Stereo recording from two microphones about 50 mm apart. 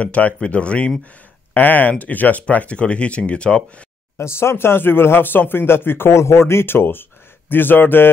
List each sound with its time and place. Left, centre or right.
0.0 s speech: left
1.5 s speech: left
4.2 s speech: left
6.1 s speech: left